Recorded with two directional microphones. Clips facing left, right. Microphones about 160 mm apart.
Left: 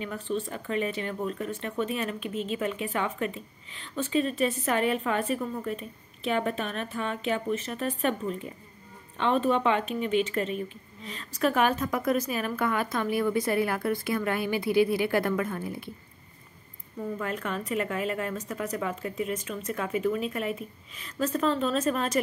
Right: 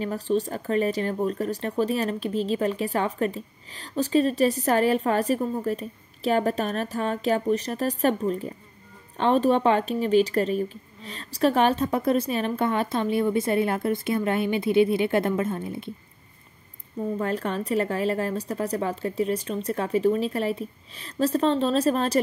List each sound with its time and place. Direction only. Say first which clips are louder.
0.0 s speech: right 6 dB; 35° right (ahead or behind)
17.2 s speech: right 5 dB; 35° right (ahead or behind)